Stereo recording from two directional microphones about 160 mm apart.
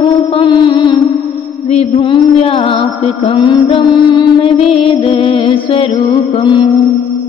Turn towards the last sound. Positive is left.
turn(degrees=25)  # may be behind; listen again after turning